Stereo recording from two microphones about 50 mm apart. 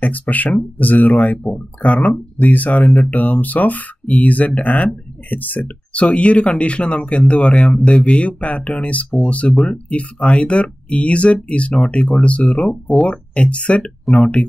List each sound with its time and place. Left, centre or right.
0.0 s speech: left
6.0 s speech: left
14.0 s speech: centre